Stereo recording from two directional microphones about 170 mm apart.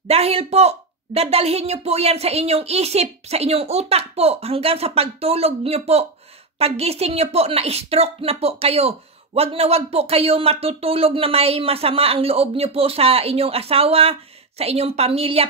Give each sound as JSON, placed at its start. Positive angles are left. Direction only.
{"t": 0.1, "sound": "speech", "side_deg": -35}